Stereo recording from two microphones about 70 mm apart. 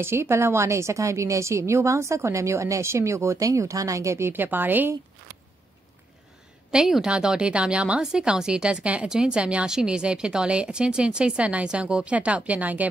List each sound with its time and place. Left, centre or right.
0.0 s a woman's voice: right
4.3 s a woman's voice: right
6.7 s speech: centre; by 12.9 s right